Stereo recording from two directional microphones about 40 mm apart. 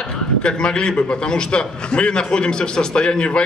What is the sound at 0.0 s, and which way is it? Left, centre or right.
A man's voice, left.